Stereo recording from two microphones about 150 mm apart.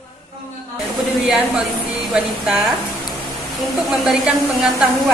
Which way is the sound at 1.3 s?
Centre (ahead or behind).